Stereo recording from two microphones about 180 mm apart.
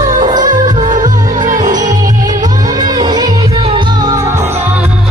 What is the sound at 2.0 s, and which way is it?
Music, 20° right (ahead or behind).